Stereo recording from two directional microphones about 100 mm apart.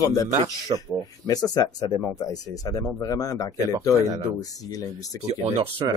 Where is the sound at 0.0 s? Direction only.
35° left (ahead or behind).